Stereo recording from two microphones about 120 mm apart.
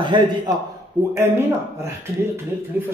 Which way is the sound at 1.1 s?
20° right (ahead or behind).